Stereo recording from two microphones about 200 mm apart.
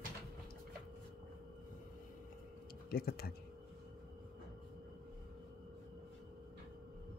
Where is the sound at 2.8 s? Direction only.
50° left (ahead or behind).